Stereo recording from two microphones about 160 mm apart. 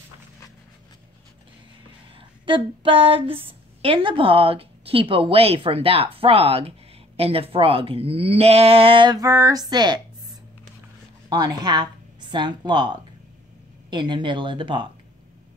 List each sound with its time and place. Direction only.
2.1 s speech: 30° right (ahead or behind)
11.2 s speech: 25° right (ahead or behind)